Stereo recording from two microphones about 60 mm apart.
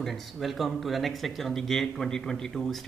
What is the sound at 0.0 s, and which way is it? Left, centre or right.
Speech, centre.